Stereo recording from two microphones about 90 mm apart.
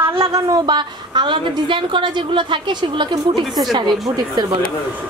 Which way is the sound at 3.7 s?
50° right (ahead or behind).